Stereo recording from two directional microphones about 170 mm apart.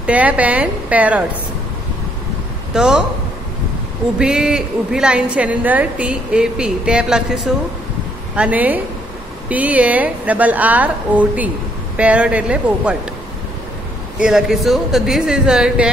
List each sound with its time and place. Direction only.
0.0 s a woman's voice: 10° right (ahead or behind)
2.7 s speech: 5° right (ahead or behind)
4.2 s a woman's voice: 5° right (ahead or behind)
14.2 s a woman's voice: centre (ahead or behind)